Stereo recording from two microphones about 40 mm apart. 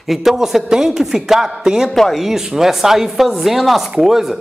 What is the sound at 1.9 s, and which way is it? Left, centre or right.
Speech, centre.